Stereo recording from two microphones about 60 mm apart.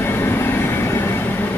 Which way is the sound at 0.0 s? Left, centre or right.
Left.